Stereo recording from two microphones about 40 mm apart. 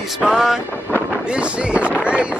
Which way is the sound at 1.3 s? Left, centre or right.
Right.